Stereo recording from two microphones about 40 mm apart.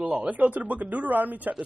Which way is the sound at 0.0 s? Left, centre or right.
Right.